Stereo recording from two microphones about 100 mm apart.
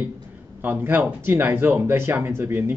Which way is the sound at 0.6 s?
20° right (ahead or behind).